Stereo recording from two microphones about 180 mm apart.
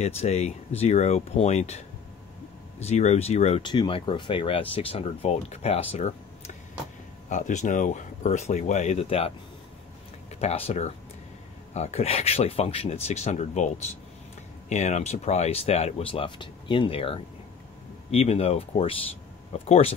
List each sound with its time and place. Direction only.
0.0 s speech: 35° left (ahead or behind)
2.8 s speech: 40° left (ahead or behind)
10.4 s speech: 35° left (ahead or behind)